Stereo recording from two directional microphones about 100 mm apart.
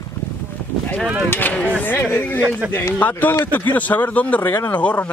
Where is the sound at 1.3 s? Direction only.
15° left (ahead or behind).